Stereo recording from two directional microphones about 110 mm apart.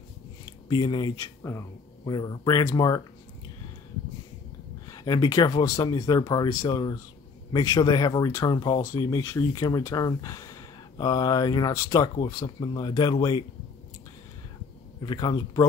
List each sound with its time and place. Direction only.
0.7 s speech: 45° left (ahead or behind)
1.1 s speech: 30° left (ahead or behind)
2.0 s speech: 40° left (ahead or behind)
4.8 s speech: 35° left (ahead or behind)
9.2 s speech: 25° left (ahead or behind)
9.5 s speech: 35° left (ahead or behind)
12.2 s speech: 45° left (ahead or behind)
15.0 s speech: 40° left (ahead or behind)